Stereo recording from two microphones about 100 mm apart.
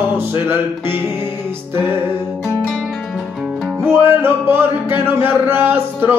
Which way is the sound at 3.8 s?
20° right (ahead or behind).